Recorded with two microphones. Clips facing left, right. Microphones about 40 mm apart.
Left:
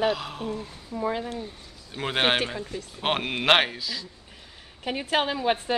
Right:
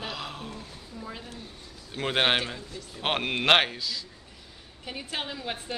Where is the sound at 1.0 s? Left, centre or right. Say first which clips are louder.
Left 13 dB; left.